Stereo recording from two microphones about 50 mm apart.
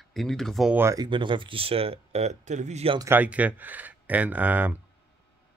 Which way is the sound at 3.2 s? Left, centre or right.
Right.